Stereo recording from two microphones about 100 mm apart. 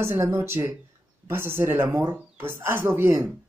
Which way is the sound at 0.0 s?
25° right (ahead or behind).